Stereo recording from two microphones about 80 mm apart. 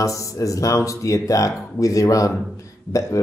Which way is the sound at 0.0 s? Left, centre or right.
Left.